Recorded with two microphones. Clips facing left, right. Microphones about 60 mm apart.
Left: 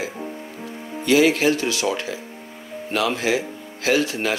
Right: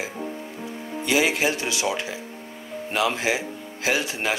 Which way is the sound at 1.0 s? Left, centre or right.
Centre.